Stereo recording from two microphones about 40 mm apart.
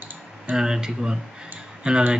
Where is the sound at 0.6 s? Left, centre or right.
Centre.